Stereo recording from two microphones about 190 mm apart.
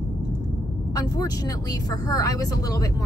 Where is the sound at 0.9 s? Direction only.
20° left (ahead or behind).